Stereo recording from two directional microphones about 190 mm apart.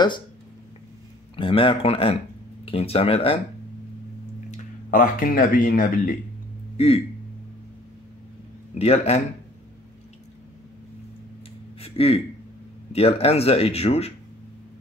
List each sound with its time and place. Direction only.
1.3 s speech: 30° left (ahead or behind)
4.5 s speech: 45° left (ahead or behind)
8.7 s speech: 35° left (ahead or behind)
11.8 s a sound: 30° left (ahead or behind)
12.9 s speech: 30° left (ahead or behind)